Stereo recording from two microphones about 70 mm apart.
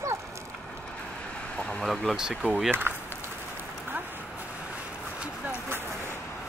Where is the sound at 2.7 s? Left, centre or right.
Right.